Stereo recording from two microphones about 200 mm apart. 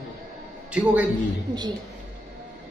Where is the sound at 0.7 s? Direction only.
5° right (ahead or behind).